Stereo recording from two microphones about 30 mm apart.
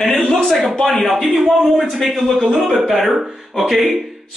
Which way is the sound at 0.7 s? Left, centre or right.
Left.